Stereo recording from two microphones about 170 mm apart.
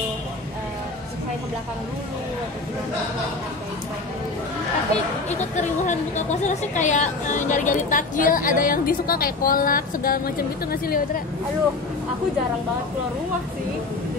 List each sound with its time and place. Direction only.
5.4 s a woman's voice: 45° left (ahead or behind); by 11.0 s 60° left (ahead or behind)